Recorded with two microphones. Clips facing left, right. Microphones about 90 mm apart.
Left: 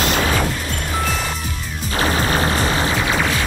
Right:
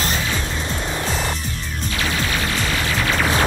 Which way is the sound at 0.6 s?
25° right (ahead or behind).